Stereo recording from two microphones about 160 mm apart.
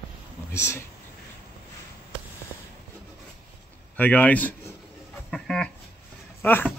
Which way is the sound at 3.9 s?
10° left (ahead or behind).